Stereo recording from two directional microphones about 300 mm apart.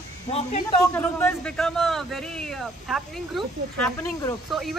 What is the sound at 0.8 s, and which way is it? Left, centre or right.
Speech, centre.